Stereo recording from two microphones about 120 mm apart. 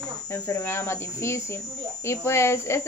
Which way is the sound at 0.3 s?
20° left (ahead or behind).